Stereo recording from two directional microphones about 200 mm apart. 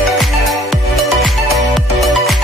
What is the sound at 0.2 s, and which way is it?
Music, centre (ahead or behind).